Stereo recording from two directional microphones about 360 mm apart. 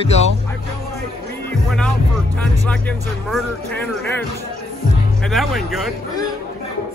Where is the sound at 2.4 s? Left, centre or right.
Centre.